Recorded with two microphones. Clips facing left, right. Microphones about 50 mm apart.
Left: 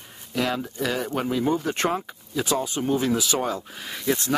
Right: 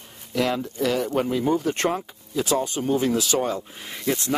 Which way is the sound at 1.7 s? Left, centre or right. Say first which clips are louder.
Right 1 dB; centre.